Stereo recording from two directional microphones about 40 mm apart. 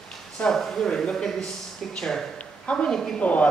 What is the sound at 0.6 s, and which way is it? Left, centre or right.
Speech, centre.